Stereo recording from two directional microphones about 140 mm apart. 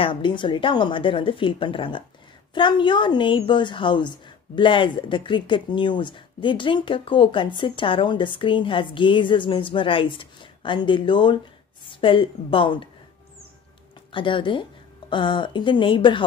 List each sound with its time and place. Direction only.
0.0 s a woman's voice: 35° left (ahead or behind)
14.1 s a woman's voice: 35° left (ahead or behind)